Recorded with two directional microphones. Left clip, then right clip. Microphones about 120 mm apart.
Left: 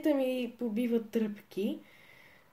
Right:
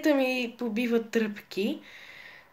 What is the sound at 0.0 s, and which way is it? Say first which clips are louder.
Speech: right 5 dB; 15° left (ahead or behind).